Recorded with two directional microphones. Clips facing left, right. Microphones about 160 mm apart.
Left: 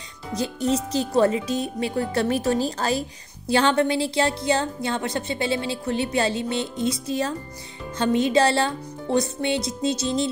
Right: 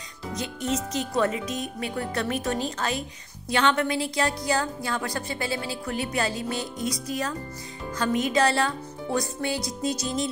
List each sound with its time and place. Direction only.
0.3 s speech: 35° left (ahead or behind)